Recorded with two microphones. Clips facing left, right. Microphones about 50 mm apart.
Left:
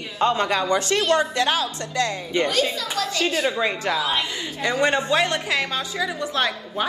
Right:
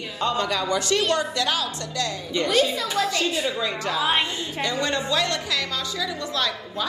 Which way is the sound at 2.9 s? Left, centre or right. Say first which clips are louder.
Right 2 dB; right.